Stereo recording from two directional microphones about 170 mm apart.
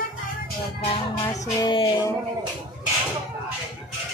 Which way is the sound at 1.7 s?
30° left (ahead or behind).